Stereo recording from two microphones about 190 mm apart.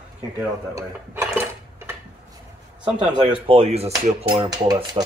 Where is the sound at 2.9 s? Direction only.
25° right (ahead or behind).